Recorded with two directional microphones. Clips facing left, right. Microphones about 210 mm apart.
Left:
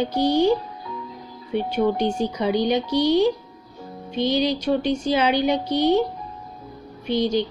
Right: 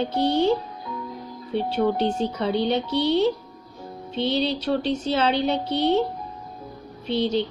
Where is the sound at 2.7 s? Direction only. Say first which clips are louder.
Left 3 dB; 30° right (ahead or behind).